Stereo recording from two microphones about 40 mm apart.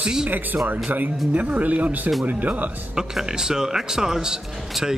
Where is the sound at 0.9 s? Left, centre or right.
Right.